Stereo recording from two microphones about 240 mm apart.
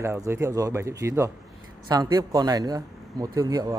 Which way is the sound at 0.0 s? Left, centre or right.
Centre.